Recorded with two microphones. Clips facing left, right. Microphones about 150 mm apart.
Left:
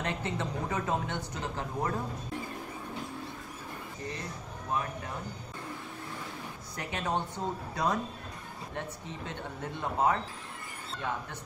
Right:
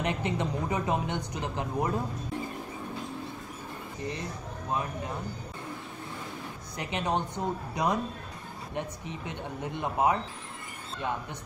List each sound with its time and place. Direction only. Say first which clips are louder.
0.0 s speech: right 4 dB; 15° right (ahead or behind)
6.8 s speech: right 3 dB; 20° right (ahead or behind)